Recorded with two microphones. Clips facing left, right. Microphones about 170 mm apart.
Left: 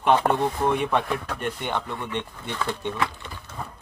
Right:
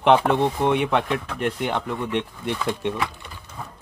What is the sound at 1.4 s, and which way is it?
Speech, 80° right.